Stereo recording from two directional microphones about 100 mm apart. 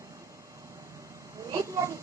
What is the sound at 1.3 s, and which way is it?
Speech, 35° right (ahead or behind).